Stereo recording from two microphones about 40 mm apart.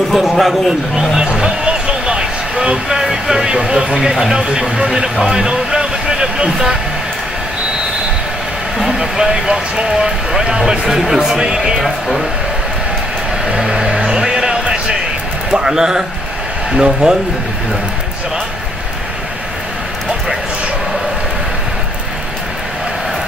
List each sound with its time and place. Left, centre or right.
0.1 s speech: centre
1.2 s music: right
2.9 s speech: centre
8.9 s speech: centre
13.6 s a sound: centre
15.5 s speech: centre